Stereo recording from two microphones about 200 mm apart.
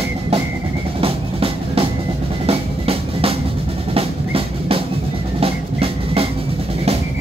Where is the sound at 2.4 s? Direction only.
30° right (ahead or behind).